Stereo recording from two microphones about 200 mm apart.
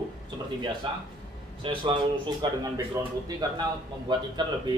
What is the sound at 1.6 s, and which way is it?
Speech, 25° right (ahead or behind).